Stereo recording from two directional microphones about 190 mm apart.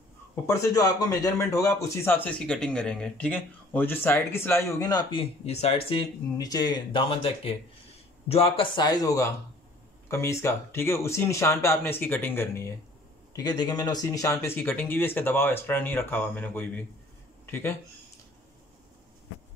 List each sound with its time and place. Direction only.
0.5 s a man's voice: 15° left (ahead or behind); by 5.9 s 30° left (ahead or behind)
6.3 s a man's voice: 20° left (ahead or behind)